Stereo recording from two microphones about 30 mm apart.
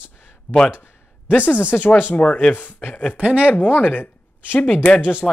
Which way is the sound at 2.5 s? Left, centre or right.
Left.